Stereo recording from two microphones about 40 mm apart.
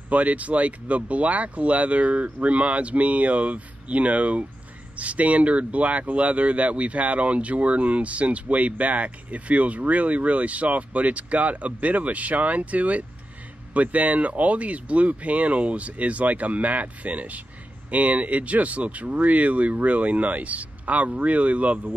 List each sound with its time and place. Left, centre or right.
0.1 s speech: right